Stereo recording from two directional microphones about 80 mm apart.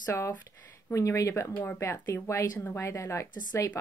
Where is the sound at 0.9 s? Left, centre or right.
Left.